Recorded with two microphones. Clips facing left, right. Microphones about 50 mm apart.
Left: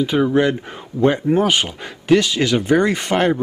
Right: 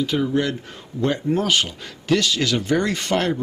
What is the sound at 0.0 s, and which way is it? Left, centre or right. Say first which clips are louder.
A man's voice: left 5 dB; left.